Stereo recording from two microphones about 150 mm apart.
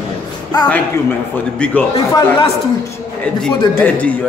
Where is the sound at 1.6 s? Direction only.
10° left (ahead or behind).